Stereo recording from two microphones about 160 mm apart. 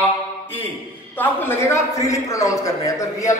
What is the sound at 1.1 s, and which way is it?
A man's voice, 10° left (ahead or behind).